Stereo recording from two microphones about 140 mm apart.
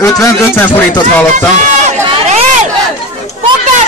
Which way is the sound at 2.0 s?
50° right (ahead or behind).